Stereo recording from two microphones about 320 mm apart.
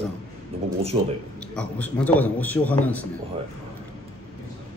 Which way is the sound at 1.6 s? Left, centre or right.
Centre.